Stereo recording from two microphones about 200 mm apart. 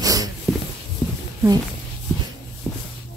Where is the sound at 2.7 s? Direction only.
5° left (ahead or behind).